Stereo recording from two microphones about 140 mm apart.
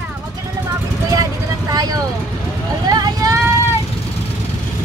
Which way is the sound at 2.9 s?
25° right (ahead or behind).